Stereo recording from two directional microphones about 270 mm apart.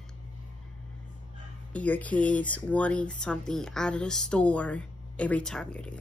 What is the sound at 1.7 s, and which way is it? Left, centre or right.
A woman's voice, centre.